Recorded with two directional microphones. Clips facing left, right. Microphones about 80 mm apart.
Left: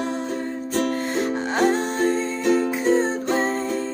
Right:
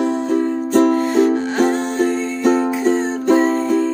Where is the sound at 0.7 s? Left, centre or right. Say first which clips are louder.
Right 9 dB; right.